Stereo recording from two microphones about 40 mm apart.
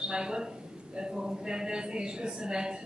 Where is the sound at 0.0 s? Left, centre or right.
Right.